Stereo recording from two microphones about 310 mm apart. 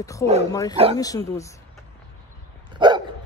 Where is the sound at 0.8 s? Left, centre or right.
Centre.